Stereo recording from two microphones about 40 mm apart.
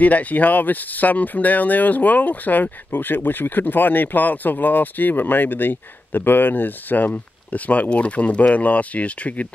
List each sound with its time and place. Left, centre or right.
0.0 s speech: left
7.5 s speech: left